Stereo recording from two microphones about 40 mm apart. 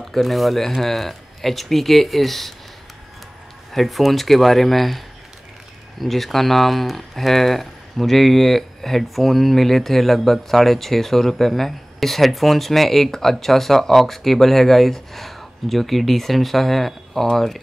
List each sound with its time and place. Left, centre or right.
0.1 s speech: centre
3.7 s speech: centre